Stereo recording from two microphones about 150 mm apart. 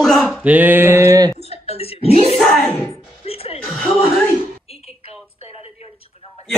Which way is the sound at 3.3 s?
40° left (ahead or behind).